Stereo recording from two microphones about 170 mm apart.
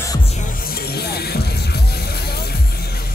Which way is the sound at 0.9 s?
70° left (ahead or behind).